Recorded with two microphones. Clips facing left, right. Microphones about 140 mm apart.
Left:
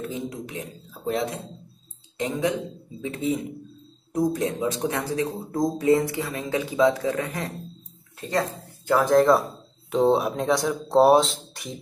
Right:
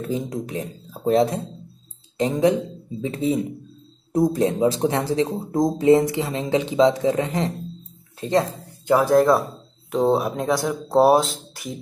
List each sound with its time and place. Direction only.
0.1 s speech: 35° right (ahead or behind)
8.8 s speech: 15° right (ahead or behind)
9.1 s speech: centre (ahead or behind)